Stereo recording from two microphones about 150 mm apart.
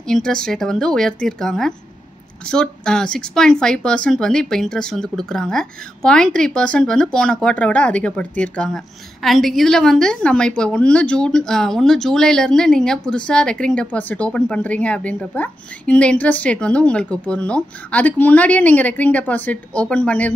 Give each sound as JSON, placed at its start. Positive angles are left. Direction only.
{"t": 0.0, "sound": "speech", "side_deg": 5}